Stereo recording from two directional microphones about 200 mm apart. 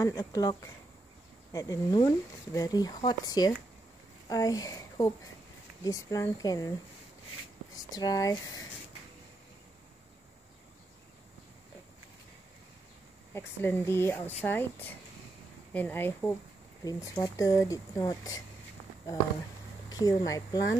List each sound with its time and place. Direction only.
0.0 s speech: 20° left (ahead or behind)
7.7 s speech: 20° left (ahead or behind)
13.3 s speech: 10° left (ahead or behind)
15.7 s speech: 10° left (ahead or behind)
19.9 s speech: 20° left (ahead or behind)